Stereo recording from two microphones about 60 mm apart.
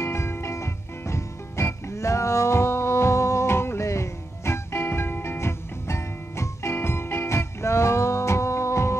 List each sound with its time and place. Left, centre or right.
0.0 s music: left